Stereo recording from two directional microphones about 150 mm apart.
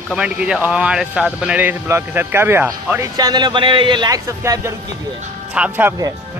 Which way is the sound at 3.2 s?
30° right (ahead or behind).